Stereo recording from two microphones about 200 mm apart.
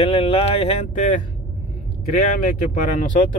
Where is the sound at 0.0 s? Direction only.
30° left (ahead or behind).